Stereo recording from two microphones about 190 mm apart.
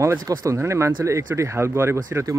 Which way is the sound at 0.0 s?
15° right (ahead or behind).